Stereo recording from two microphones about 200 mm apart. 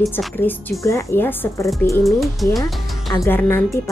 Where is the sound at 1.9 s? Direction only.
Centre (ahead or behind).